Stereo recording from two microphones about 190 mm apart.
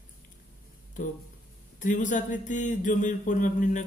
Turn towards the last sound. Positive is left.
turn(degrees=40)  # may be behind; listen again after turning